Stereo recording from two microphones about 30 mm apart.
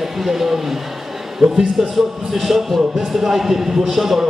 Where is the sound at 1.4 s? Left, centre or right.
Right.